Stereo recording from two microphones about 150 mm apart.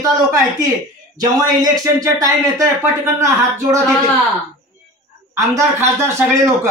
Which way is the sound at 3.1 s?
20° right (ahead or behind).